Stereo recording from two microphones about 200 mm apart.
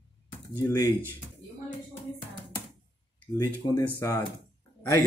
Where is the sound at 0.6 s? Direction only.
15° left (ahead or behind).